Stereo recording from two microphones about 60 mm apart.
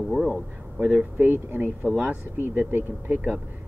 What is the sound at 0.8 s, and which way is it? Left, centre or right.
Speech, right.